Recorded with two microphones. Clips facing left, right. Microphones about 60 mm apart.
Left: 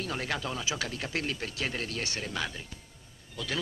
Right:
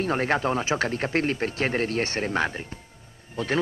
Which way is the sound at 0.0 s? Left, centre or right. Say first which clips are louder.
Right 10 dB; right.